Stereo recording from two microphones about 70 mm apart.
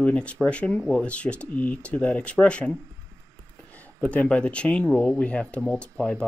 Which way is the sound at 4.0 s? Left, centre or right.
Centre.